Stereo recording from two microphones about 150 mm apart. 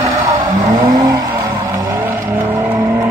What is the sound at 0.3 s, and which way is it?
Vehicle, 25° right (ahead or behind).